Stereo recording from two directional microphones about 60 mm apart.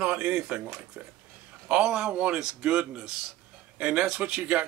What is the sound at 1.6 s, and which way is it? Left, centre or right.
A man's voice, centre.